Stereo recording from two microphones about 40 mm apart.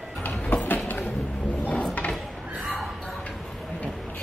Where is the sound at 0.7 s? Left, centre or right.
Left.